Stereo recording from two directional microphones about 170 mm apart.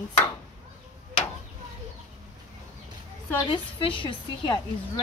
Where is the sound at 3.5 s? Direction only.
30° left (ahead or behind).